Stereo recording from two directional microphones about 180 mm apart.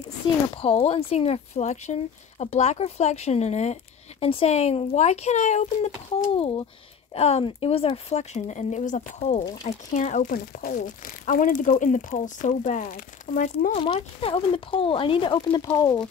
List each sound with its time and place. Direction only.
0.6 s speech: 35° left (ahead or behind)
7.2 s speech: 35° left (ahead or behind)
13.7 s speech: 30° left (ahead or behind)